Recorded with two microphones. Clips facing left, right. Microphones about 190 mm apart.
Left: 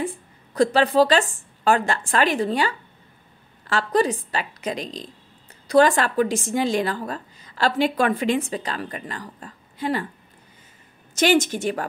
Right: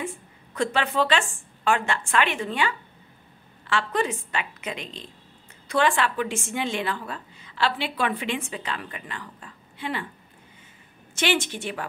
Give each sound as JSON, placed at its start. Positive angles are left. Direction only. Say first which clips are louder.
{"t": 0.0, "sound": "a woman's voice", "louder": "left 5 dB", "side_deg": 35}
{"t": 11.1, "sound": "a woman's voice", "louder": "left 7 dB", "side_deg": 40}